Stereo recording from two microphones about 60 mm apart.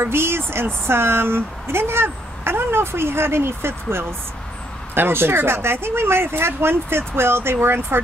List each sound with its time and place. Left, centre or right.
0.0 s speech: right